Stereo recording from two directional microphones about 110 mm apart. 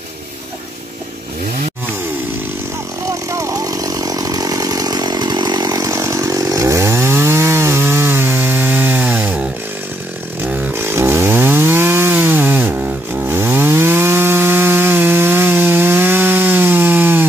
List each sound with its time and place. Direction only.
3.1 s chainsaw: 30° right (ahead or behind)